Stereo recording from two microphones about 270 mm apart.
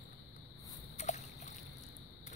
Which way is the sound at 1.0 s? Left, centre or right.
Left.